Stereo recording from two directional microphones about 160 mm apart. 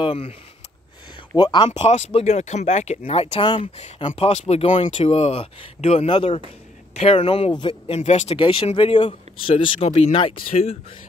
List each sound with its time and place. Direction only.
0.0 s speech: 35° left (ahead or behind)
1.3 s speech: 30° left (ahead or behind)
1.7 s speech: 40° left (ahead or behind)